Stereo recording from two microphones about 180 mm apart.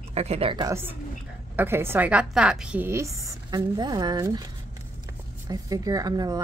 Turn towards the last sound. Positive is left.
turn(degrees=-20)  # may be behind; listen again after turning